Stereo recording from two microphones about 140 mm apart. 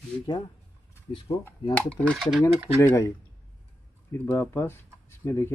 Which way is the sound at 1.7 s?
10° left (ahead or behind).